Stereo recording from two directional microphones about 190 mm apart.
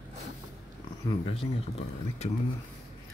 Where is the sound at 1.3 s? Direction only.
30° left (ahead or behind).